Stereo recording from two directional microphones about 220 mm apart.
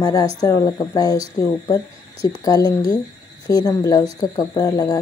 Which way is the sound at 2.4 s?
15° left (ahead or behind).